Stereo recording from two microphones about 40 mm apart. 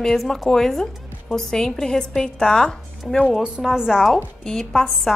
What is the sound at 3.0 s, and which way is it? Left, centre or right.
Speech, centre.